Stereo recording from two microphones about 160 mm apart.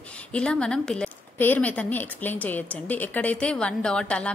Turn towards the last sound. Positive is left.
turn(degrees=5)  # may be behind; listen again after turning